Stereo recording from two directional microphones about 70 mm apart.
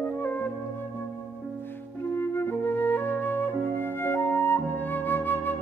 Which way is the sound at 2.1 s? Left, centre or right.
Left.